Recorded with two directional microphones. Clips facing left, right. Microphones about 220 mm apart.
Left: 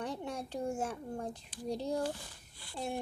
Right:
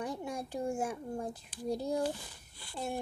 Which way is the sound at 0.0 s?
10° right (ahead or behind).